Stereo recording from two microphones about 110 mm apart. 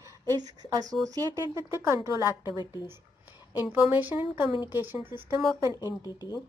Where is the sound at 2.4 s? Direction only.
40° left (ahead or behind).